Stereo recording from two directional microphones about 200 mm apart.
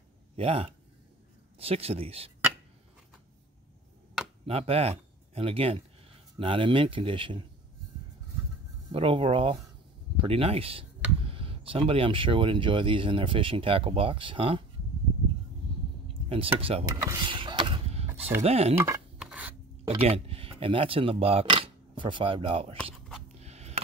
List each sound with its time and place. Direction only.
0.4 s speech: 30° right (ahead or behind)
4.5 s speech: 30° right (ahead or behind)
8.9 s speech: 25° right (ahead or behind)
16.1 s chopping: 25° right (ahead or behind)
16.5 s speech: 25° right (ahead or behind)
16.9 s a sound: 15° right (ahead or behind)
18.4 s speech: 30° right (ahead or behind)
19.1 s scissors: 5° right (ahead or behind)
19.8 s speech: 25° right (ahead or behind)
23.2 s a sound: 35° right (ahead or behind)